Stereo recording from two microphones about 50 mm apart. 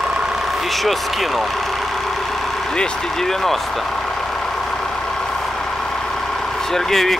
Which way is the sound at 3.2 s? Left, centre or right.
Centre.